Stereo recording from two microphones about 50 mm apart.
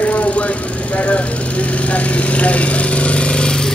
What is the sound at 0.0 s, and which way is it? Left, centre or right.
Vehicle, left.